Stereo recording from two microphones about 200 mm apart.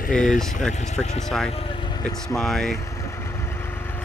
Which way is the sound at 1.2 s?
Centre (ahead or behind).